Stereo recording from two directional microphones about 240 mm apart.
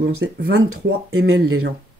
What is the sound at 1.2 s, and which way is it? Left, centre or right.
Speech, right.